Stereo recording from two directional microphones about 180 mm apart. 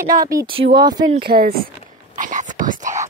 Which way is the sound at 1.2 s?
60° right (ahead or behind).